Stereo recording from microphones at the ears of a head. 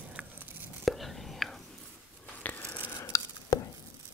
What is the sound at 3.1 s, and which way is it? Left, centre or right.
Chopping, left.